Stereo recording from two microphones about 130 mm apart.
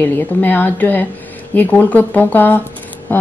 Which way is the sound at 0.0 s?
15° left (ahead or behind).